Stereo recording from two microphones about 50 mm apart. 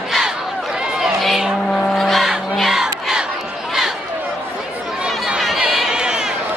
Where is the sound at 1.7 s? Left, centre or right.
Centre.